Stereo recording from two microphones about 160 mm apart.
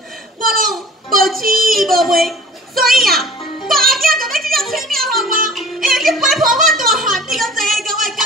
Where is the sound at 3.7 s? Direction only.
Centre (ahead or behind).